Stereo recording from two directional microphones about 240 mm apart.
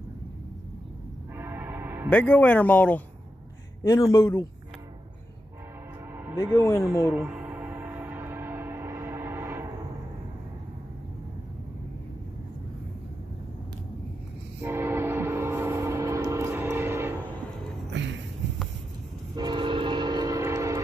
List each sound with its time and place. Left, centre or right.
1.4 s train: centre
2.0 s speech: centre
6.1 s music: centre
6.5 s speech: centre
6.9 s a sound: centre
14.6 s train: centre
17.9 s a sound: right
19.3 s train: centre